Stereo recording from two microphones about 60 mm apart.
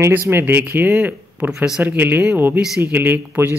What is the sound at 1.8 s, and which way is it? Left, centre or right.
Speech, right.